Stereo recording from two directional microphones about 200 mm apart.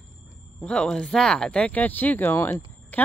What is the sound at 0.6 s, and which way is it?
Speech, 5° left (ahead or behind).